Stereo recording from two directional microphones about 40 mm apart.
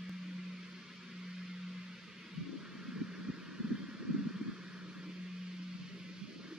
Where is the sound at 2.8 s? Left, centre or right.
Centre.